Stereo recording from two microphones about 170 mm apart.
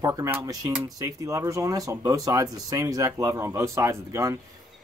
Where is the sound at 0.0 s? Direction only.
20° right (ahead or behind).